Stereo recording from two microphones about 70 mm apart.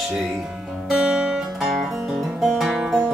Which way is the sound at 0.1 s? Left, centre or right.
Centre.